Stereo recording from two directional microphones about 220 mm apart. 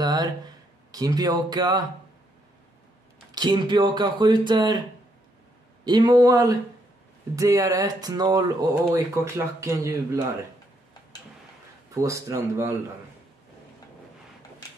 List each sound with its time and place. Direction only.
0.0 s a sound: 20° right (ahead or behind)
0.9 s music: 15° right (ahead or behind)
3.3 s speech: 20° right (ahead or behind)
5.9 s music: 20° right (ahead or behind)
11.9 s music: 15° right (ahead or behind)